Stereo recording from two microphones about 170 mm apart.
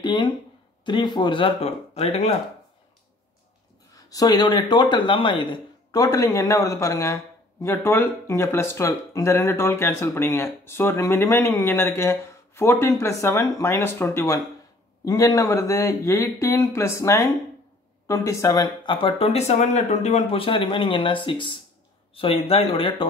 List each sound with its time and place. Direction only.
0.0 s a sound: 25° left (ahead or behind)
0.8 s speech: 25° left (ahead or behind)
3.9 s speech: 20° left (ahead or behind)